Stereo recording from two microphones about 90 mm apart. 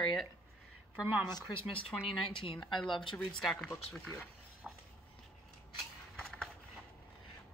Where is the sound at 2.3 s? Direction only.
65° left (ahead or behind).